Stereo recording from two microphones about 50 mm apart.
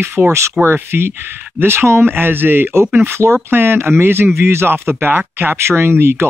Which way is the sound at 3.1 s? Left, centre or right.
Right.